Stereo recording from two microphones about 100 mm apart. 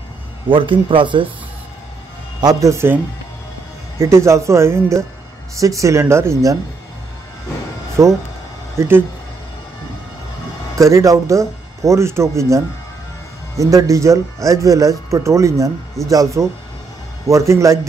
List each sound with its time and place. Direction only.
0.5 s speech: 55° right (ahead or behind)
2.4 s speech: 30° right (ahead or behind)
4.0 s speech: 30° right (ahead or behind)
8.0 s speech: 30° right (ahead or behind)
10.8 s speech: 30° right (ahead or behind)